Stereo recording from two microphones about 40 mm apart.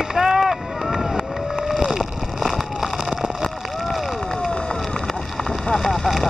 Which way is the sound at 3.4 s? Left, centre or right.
Centre.